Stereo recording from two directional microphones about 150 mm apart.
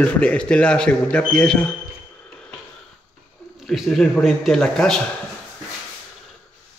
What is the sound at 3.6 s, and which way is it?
Speech, centre (ahead or behind).